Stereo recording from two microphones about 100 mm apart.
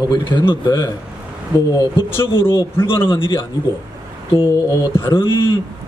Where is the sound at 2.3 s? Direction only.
60° left (ahead or behind).